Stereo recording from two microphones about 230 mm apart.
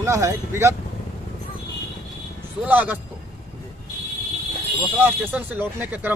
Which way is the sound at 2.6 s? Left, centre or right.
Centre.